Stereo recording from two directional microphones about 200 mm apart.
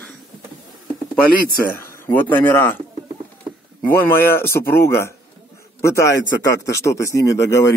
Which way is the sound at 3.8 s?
10° left (ahead or behind).